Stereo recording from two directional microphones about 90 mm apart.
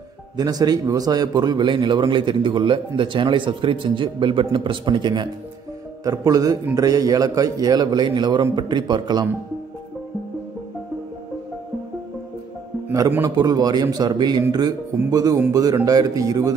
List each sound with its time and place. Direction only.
0.4 s a man's voice: 45° right (ahead or behind)
6.0 s a man's voice: 40° right (ahead or behind)
13.4 s a man's voice: 50° right (ahead or behind)